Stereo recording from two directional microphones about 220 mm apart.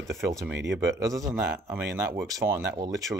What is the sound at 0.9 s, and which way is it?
Speech, 15° right (ahead or behind).